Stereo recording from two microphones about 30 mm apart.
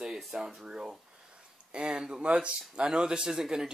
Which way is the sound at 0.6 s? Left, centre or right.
Right.